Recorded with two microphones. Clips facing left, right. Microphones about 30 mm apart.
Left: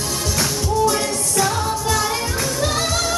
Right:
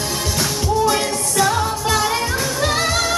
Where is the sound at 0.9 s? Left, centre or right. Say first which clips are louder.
Right 2 dB; centre.